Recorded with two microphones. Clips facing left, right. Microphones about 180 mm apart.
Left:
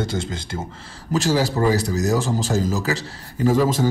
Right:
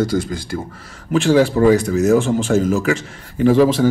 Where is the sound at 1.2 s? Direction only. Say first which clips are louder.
Right 7 dB; 40° left (ahead or behind).